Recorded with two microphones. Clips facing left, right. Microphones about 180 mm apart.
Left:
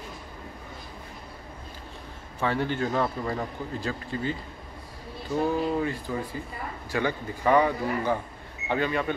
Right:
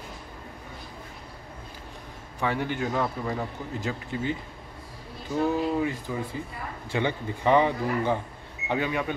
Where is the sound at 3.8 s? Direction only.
20° right (ahead or behind).